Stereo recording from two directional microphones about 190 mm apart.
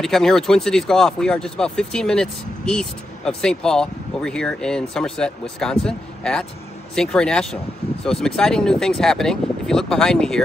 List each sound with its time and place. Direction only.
0.0 s speech: centre (ahead or behind)